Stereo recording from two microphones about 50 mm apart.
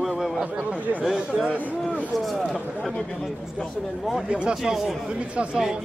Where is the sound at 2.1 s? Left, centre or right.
Centre.